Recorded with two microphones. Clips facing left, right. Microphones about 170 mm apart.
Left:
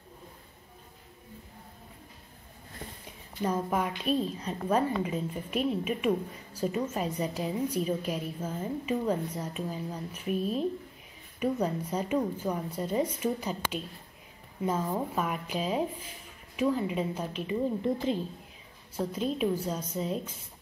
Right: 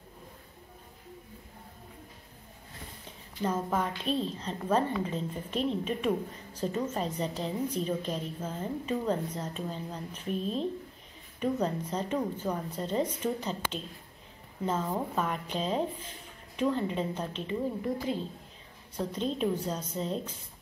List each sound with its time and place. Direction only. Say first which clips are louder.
3.1 s a woman's voice: left 1 dB; 10° left (ahead or behind)
17.8 s a woman's voice: left 3 dB; 20° left (ahead or behind)
18.9 s a woman's voice: left 1 dB; 5° left (ahead or behind)